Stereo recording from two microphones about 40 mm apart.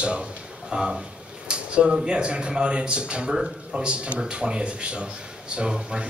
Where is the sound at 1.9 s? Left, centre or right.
Right.